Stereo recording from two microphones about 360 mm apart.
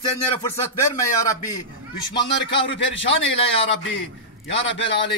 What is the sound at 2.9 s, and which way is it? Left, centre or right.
A man's voice, left.